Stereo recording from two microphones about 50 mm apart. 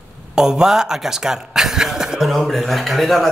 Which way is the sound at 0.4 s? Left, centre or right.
Centre.